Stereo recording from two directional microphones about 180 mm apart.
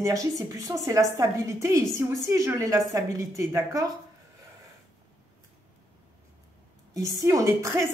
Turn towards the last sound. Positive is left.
turn(degrees=-15)  # may be behind; listen again after turning